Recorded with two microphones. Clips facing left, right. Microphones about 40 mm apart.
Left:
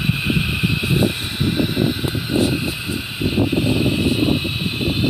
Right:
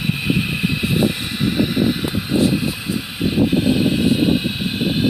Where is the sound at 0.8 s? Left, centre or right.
Left.